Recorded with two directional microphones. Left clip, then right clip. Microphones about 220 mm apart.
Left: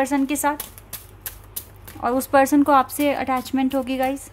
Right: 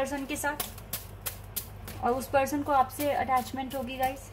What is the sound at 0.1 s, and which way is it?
Speech, 50° left (ahead or behind).